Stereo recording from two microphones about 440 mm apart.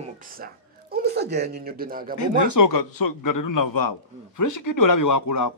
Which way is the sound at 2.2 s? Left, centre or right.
Left.